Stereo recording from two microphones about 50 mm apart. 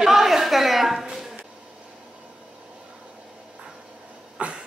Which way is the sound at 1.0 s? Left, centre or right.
Centre.